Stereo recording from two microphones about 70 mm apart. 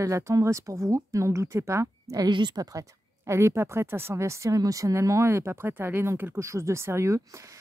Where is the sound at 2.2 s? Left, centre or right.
Right.